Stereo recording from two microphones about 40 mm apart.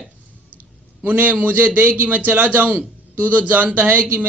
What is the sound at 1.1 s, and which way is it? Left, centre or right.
Speech, right.